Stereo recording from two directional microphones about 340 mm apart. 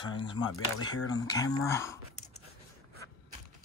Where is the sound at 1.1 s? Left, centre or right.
Centre.